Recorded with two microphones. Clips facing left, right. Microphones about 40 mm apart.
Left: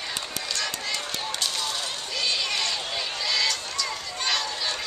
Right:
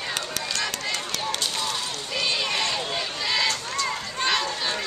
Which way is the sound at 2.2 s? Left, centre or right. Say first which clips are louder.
Right 2 dB; right.